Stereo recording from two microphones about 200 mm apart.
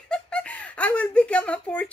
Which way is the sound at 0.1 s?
5° left (ahead or behind).